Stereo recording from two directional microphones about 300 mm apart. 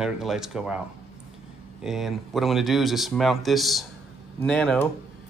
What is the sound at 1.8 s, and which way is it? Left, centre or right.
Speech, centre.